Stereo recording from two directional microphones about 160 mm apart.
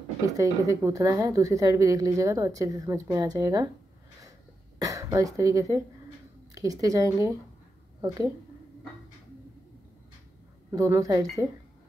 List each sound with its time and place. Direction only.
0.4 s a woman's voice: 20° right (ahead or behind)
4.7 s a woman's voice: 20° right (ahead or behind)
10.7 s a woman's voice: 20° right (ahead or behind)